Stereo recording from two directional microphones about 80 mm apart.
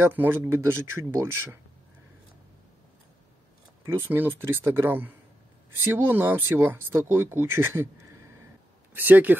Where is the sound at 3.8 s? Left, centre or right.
Right.